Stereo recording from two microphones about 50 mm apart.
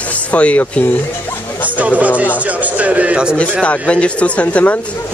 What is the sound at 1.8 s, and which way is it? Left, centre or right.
A man's voice, right.